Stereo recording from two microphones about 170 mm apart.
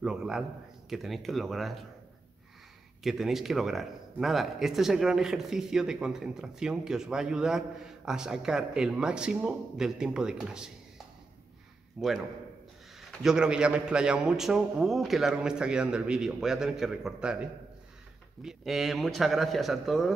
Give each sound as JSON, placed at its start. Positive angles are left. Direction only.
{"t": 0.0, "sound": "speech", "side_deg": -5}
{"t": 3.0, "sound": "speech", "side_deg": 0}
{"t": 12.0, "sound": "speech", "side_deg": -5}
{"t": 13.2, "sound": "speech", "side_deg": -5}
{"t": 18.4, "sound": "speech", "side_deg": -5}